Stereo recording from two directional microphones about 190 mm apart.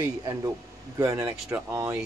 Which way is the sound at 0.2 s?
20° right (ahead or behind).